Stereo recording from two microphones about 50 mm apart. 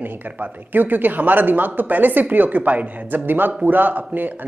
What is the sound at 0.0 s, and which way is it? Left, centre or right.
Speech, right.